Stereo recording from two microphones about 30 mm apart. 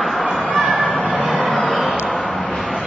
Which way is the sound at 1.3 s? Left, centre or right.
Left.